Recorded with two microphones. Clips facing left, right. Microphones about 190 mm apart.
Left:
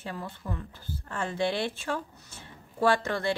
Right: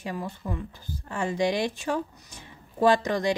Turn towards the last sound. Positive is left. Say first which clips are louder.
# right 4 dB
turn(degrees=-15)  # may be behind; listen again after turning